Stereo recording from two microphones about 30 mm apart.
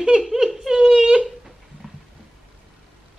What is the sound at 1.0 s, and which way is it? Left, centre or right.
Speech, right.